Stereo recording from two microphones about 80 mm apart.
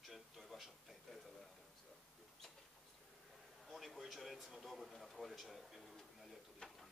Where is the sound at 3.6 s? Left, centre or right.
Centre.